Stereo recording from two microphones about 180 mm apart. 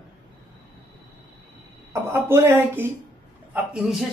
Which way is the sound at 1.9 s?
15° right (ahead or behind).